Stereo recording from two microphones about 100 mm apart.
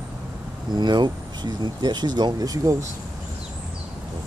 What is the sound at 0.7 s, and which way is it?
Vehicle, 45° right (ahead or behind).